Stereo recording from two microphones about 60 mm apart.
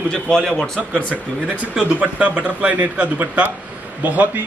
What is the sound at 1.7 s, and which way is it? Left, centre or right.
Speech, centre.